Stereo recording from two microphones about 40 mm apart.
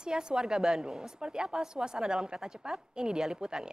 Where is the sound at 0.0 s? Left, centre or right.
Right.